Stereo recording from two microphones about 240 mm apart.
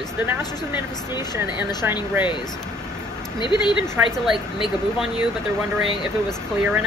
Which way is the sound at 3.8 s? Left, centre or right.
Centre.